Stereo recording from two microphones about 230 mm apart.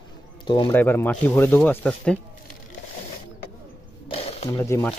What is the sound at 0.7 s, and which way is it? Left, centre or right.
Speech, centre.